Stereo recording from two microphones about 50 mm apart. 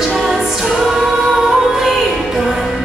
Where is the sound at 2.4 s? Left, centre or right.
Centre.